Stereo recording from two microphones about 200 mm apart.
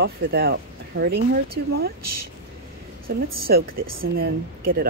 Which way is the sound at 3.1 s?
50° right (ahead or behind).